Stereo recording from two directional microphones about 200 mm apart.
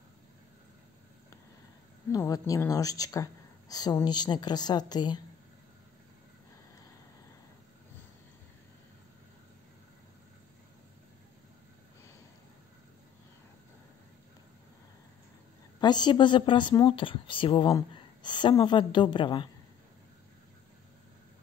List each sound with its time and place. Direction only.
2.1 s a woman's voice: 15° left (ahead or behind)
15.8 s a woman's voice: 20° left (ahead or behind)